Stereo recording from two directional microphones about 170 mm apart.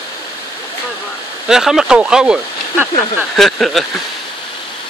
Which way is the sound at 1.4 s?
5° right (ahead or behind).